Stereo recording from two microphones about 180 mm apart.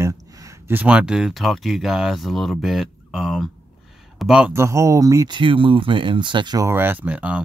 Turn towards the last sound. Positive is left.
turn(degrees=-10)  # may be behind; listen again after turning